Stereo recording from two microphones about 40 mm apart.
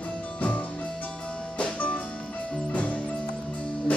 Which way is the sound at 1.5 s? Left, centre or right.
Left.